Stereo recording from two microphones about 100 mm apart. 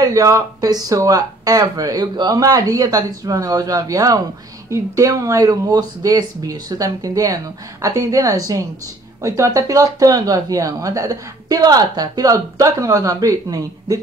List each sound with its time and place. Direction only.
0.0 s speech: 35° right (ahead or behind)